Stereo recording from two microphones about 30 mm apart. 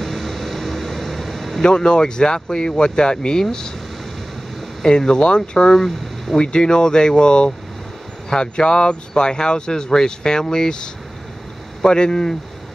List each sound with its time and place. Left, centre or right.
0.0 s vehicle: centre
1.6 s speech: left
4.8 s speech: left